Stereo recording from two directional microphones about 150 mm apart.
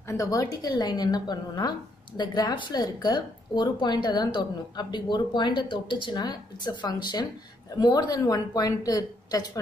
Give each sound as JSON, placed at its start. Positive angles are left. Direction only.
{"t": 0.1, "sound": "a woman's voice", "side_deg": 20}